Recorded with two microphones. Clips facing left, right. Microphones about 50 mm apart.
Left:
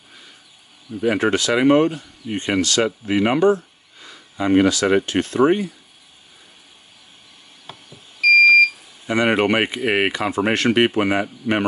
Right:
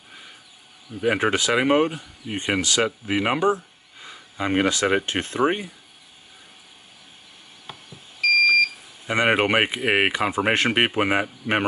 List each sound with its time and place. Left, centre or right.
1.0 s speech: centre
5.4 s speech: centre
9.0 s speech: centre